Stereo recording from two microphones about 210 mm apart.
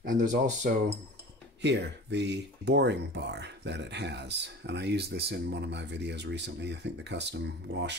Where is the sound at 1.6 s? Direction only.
55° right (ahead or behind).